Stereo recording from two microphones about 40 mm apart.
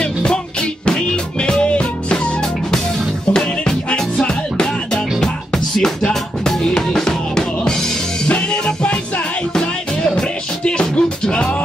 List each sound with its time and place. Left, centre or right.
1.4 s music: left
3.3 s music: centre
6.7 s music: centre
9.6 s music: centre
10.6 s music: left